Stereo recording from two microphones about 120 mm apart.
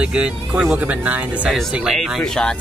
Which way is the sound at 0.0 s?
10° right (ahead or behind).